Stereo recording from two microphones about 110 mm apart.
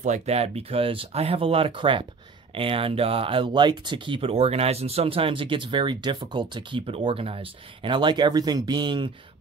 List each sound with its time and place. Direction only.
0.0 s speech: 80° right; by 9.1 s 45° right (ahead or behind)